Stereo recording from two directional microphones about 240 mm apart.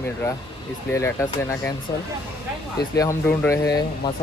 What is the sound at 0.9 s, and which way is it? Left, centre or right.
Speech, centre.